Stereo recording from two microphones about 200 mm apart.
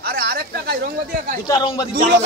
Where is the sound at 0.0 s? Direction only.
50° right (ahead or behind).